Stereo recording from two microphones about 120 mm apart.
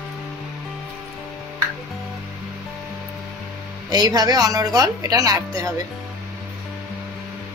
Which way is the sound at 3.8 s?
35° right (ahead or behind).